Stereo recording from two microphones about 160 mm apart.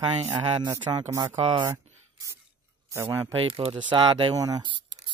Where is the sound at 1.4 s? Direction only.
35° right (ahead or behind).